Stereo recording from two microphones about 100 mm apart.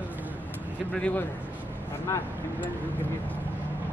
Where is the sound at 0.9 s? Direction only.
15° left (ahead or behind).